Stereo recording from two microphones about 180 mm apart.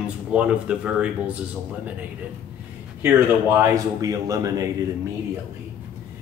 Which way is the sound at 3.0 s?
15° right (ahead or behind).